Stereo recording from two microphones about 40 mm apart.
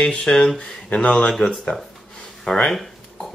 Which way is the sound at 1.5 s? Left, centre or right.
Centre.